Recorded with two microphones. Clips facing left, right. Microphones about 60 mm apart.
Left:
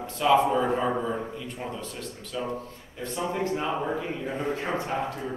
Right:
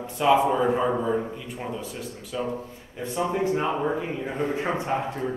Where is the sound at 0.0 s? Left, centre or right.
Centre.